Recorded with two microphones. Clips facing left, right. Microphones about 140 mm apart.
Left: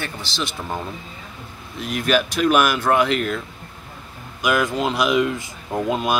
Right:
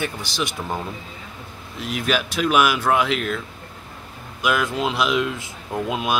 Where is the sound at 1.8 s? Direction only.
Centre (ahead or behind).